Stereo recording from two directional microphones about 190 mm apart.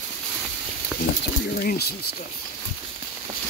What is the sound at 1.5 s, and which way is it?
Speech, 55° left (ahead or behind).